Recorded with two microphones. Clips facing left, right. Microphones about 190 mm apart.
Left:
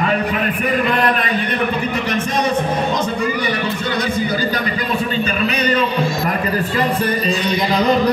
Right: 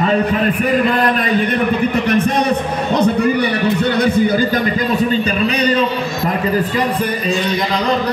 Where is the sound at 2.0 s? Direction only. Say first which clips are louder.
Right 4 dB; 60° right (ahead or behind).